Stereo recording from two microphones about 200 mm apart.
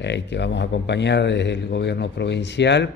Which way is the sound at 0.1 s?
60° left (ahead or behind).